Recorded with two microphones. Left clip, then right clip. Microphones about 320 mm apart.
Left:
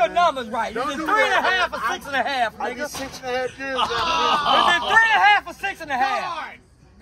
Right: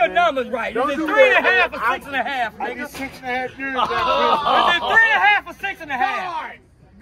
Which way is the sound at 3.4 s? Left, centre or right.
Centre.